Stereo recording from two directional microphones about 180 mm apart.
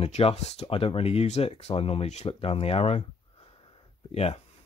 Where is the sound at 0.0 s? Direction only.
35° left (ahead or behind).